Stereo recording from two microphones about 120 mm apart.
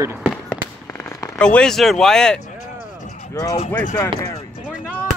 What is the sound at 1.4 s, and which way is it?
Speech, 5° left (ahead or behind).